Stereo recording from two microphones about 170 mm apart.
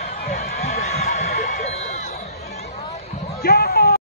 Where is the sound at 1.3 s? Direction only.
60° left (ahead or behind).